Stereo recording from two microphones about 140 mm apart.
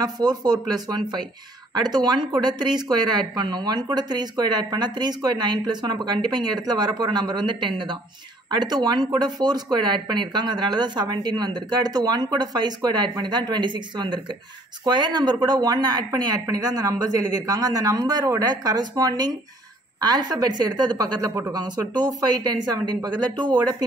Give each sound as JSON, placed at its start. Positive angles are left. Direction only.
{"t": 0.0, "sound": "speech", "side_deg": -30}